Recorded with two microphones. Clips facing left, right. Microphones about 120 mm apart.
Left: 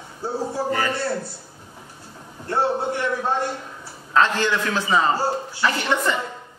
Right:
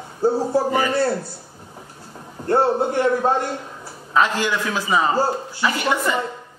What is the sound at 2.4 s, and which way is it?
Speech, 45° right (ahead or behind).